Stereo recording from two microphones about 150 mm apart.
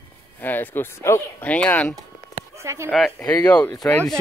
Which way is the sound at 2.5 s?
20° right (ahead or behind).